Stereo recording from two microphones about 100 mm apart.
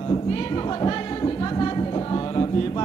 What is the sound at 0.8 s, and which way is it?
Music, 45° left (ahead or behind).